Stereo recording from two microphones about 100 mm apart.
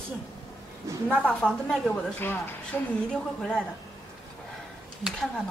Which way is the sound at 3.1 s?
5° left (ahead or behind).